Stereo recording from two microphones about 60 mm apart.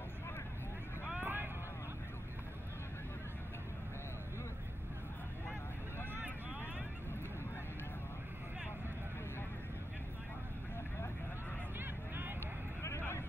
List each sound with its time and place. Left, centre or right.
1.2 s clip-clop: right